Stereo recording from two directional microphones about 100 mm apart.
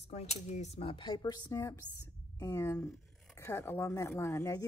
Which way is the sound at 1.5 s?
30° left (ahead or behind).